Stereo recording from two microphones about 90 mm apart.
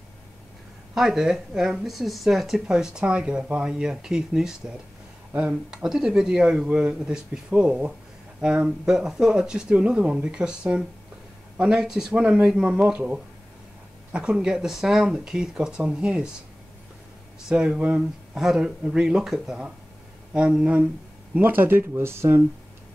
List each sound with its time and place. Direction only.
0.9 s speech: 5° right (ahead or behind)
17.5 s speech: 10° right (ahead or behind)
21.4 s speech: 20° right (ahead or behind)